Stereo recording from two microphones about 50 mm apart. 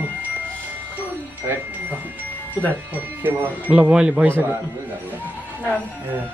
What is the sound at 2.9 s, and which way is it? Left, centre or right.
Speech, right.